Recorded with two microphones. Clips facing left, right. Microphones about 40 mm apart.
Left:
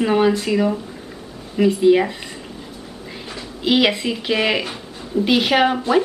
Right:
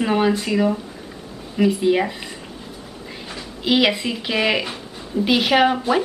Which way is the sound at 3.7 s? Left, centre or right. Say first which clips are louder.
Left 1 dB; centre.